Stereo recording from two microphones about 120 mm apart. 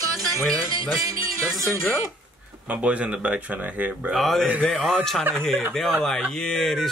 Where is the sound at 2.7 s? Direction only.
10° right (ahead or behind).